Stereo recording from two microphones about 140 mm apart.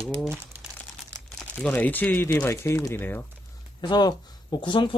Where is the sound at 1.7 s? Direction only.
10° left (ahead or behind).